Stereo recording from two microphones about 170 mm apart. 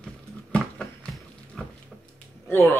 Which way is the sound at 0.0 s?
5° left (ahead or behind).